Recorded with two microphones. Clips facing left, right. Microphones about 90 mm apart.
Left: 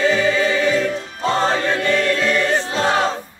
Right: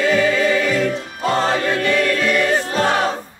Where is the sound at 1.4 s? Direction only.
30° left (ahead or behind).